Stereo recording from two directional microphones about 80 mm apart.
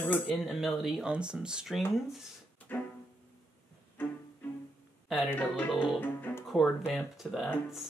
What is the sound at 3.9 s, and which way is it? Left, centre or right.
Music, left.